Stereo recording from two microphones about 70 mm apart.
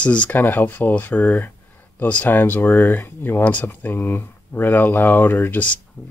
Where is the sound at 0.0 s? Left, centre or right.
Centre.